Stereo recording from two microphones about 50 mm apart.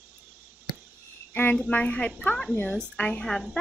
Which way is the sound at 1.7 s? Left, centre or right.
Left.